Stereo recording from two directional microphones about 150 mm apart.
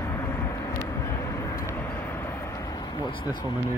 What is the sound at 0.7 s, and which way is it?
Vehicle, 20° left (ahead or behind).